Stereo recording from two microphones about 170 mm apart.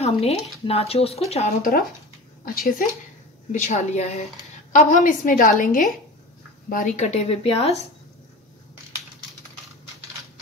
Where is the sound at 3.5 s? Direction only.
45° left (ahead or behind).